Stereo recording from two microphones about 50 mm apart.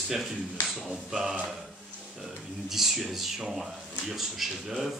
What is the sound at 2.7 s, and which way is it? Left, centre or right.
Speech, centre.